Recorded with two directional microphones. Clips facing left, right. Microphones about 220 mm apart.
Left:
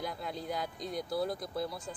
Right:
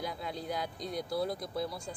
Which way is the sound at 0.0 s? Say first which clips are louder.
Even; centre (ahead or behind).